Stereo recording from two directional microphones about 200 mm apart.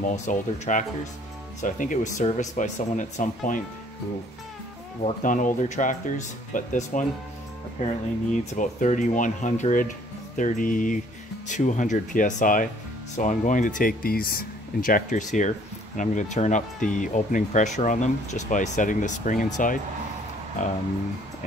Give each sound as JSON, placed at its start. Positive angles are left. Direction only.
{"t": 0.0, "sound": "speech", "side_deg": 40}
{"t": 5.0, "sound": "speech", "side_deg": 40}
{"t": 8.3, "sound": "speech", "side_deg": 40}